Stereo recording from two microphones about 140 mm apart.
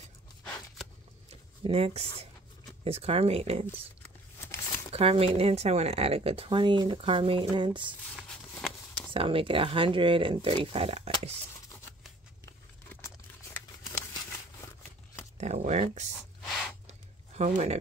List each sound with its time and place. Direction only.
1.3 s a sound: 45° right (ahead or behind)
2.8 s speech: 45° right (ahead or behind)
4.0 s a sound: 15° left (ahead or behind)
4.9 s speech: 45° right (ahead or behind)
8.2 s a sound: 5° left (ahead or behind)
9.1 s speech: 40° right (ahead or behind)
12.9 s crumpling: 15° left (ahead or behind)
15.3 s speech: 55° right (ahead or behind)
17.4 s speech: 55° right (ahead or behind)